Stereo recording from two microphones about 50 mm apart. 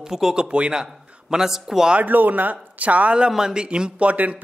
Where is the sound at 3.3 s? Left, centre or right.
Centre.